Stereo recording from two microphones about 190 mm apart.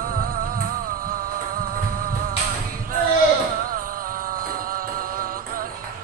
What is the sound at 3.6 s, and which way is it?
Music, 50° right (ahead or behind).